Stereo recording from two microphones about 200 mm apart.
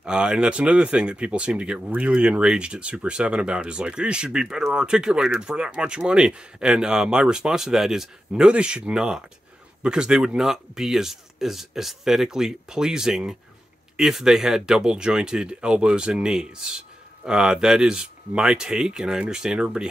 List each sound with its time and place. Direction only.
0.0 s speech: 5° right (ahead or behind)